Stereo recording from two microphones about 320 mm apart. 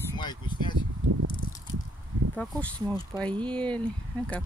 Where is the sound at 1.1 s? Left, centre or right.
Right.